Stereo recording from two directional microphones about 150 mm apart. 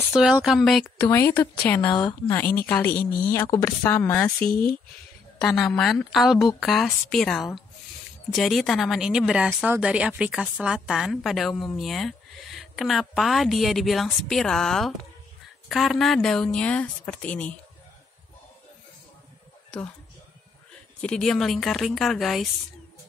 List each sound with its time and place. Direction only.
0.1 s speech: 5° right (ahead or behind)
0.8 s a woman's voice: 15° left (ahead or behind)
2.0 s speech: 25° left (ahead or behind)
2.6 s a woman's voice: 10° left (ahead or behind)
3.0 s a woman's voice: 90° left
3.5 s a woman's voice: 15° left (ahead or behind)
5.4 s a woman's voice: centre (ahead or behind)
21.0 s speech: 5° left (ahead or behind)